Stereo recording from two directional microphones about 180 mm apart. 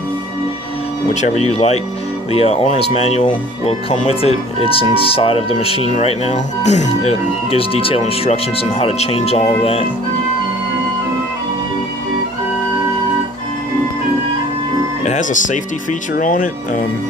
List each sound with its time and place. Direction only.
1.3 s speech: 35° left (ahead or behind)
15.0 s speech: 45° left (ahead or behind)